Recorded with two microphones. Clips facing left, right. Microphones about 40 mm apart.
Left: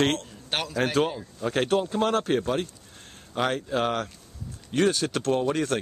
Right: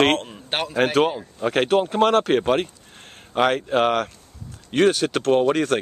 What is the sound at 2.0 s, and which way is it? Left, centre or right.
Speech, right.